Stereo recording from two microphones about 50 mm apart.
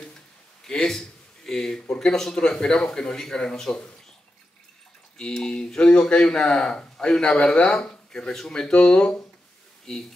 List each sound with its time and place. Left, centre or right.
0.8 s speech: centre
5.1 s speech: centre